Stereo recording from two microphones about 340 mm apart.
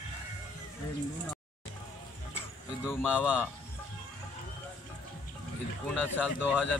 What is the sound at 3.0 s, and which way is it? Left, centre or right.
Speech, centre.